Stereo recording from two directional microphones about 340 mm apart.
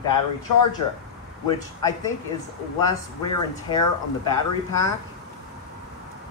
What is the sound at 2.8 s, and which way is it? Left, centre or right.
Speech, centre.